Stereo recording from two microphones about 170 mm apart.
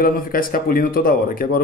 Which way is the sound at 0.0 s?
60° left (ahead or behind).